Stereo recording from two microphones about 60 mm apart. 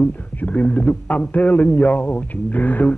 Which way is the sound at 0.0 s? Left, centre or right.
Left.